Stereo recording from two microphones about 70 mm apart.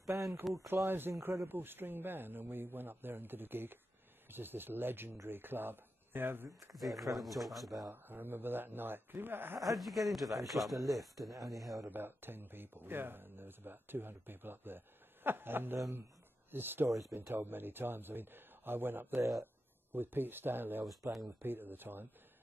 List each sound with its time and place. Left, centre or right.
0.0 s a sound: right
0.8 s a man's voice: right
6.7 s speech: centre
7.9 s speech: right
9.8 s speech: centre
11.3 s speech: right
11.9 s speech: right
21.0 s speech: right
21.4 s speech: right